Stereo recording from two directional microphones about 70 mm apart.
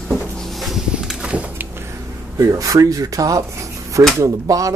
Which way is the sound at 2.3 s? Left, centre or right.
Right.